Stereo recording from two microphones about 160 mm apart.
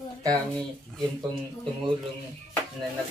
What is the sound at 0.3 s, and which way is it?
Speech, 5° left (ahead or behind).